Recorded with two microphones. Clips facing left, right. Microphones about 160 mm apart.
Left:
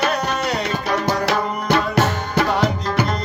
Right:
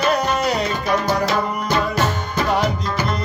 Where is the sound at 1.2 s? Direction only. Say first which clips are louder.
Left 1 dB; 70° left (ahead or behind).